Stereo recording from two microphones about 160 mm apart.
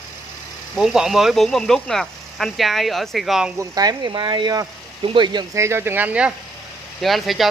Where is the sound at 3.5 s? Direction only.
25° right (ahead or behind).